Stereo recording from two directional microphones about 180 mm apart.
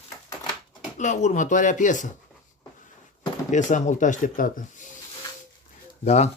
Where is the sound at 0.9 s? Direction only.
40° left (ahead or behind).